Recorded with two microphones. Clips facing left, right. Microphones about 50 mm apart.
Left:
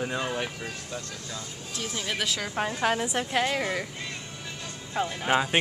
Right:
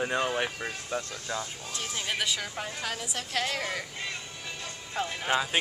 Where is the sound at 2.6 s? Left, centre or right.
Left.